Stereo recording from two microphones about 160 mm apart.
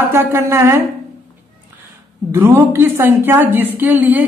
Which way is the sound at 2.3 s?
15° right (ahead or behind).